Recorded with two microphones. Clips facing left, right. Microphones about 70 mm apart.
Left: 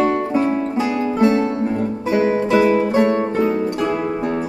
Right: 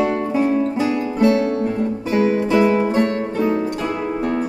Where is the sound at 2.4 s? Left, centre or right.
Centre.